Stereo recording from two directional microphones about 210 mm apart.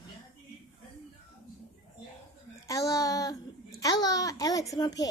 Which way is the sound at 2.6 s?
15° left (ahead or behind).